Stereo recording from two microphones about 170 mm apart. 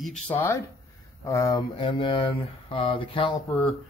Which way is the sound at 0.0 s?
5° left (ahead or behind).